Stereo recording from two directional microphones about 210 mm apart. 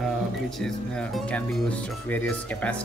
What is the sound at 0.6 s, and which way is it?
Speech, centre (ahead or behind).